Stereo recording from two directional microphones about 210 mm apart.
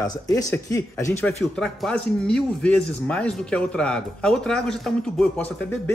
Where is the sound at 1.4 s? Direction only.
Centre (ahead or behind).